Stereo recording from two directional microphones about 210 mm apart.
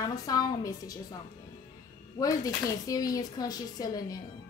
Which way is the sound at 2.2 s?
15° left (ahead or behind).